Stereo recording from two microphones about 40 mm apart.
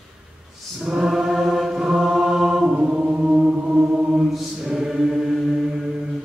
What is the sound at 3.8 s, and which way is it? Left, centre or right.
Mantra, right.